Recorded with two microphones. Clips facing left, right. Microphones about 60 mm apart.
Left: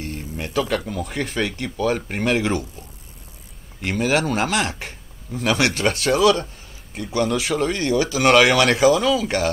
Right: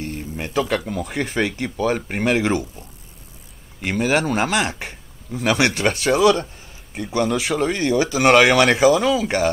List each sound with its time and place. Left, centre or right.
0.4 s a man's voice: right
0.7 s speech: centre
3.8 s speech: centre